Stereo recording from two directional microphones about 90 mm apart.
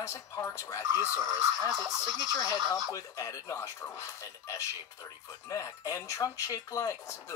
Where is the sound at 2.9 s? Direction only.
40° left (ahead or behind).